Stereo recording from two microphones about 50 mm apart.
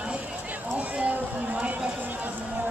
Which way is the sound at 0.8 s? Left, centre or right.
Right.